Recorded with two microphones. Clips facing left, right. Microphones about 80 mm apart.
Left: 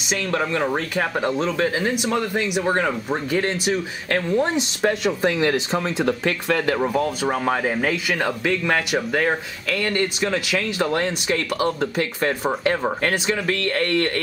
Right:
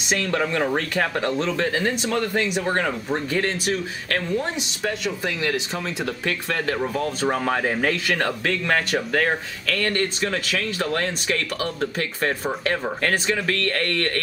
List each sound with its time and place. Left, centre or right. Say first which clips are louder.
0.3 s speech: left 1 dB; centre
7.1 s speech: left 1 dB; centre